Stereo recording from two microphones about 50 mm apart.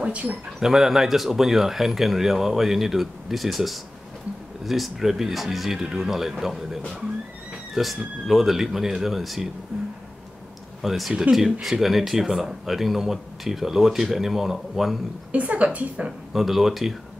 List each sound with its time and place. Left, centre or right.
0.0 s speech: right
0.6 s speech: centre
10.8 s speech: centre
15.3 s a woman's voice: right
16.3 s speech: centre